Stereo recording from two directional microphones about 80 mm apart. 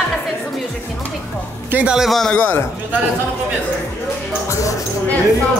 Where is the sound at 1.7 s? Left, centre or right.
Centre.